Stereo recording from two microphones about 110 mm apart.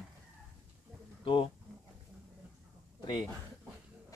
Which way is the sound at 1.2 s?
50° left (ahead or behind).